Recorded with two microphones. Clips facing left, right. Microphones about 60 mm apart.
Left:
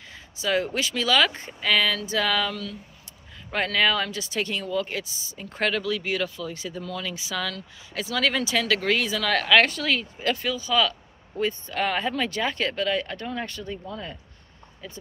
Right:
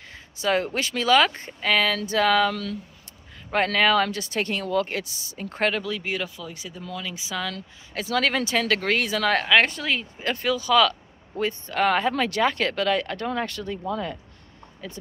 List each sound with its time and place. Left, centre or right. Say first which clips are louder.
0.4 s speech: right 1 dB; right
3.5 s speech: right 3 dB; right
5.5 s speech: even; right
7.5 s speech: even; right
9.3 s speech: left 1 dB; right
10.3 s speech: right 5 dB; right